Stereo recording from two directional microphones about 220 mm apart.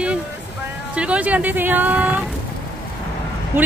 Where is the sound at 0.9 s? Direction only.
5° right (ahead or behind).